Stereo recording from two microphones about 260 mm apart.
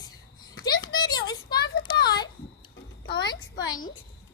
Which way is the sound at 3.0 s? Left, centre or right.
Left.